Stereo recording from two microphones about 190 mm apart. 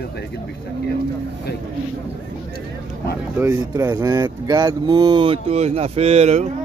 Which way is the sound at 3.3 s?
15° right (ahead or behind).